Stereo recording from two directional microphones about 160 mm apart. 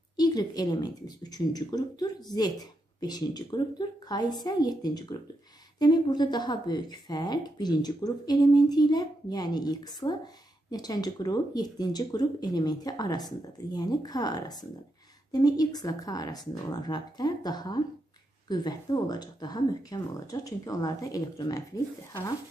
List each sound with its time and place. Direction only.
0.1 s speech: 25° left (ahead or behind)